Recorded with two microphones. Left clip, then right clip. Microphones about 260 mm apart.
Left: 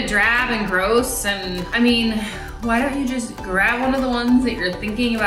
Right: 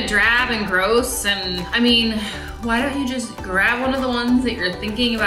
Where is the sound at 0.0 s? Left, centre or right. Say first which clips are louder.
Right 1 dB; centre.